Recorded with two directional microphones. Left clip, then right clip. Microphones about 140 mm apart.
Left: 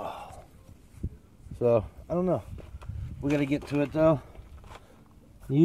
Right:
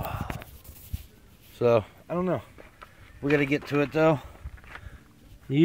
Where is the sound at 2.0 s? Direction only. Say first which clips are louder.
Left 1 dB; 10° left (ahead or behind).